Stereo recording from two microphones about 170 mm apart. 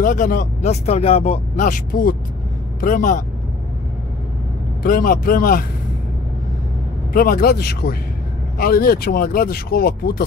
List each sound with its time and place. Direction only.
0.0 s speech: 55° left (ahead or behind); by 1.7 s 35° left (ahead or behind)
1.7 s speech: 55° left (ahead or behind)
4.8 s speech: 55° left (ahead or behind)
7.1 s speech: 60° left (ahead or behind)